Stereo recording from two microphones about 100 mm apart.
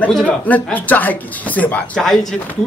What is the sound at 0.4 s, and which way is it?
A man's voice, 15° left (ahead or behind).